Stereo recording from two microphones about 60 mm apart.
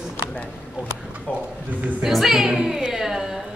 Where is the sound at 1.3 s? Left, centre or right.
Centre.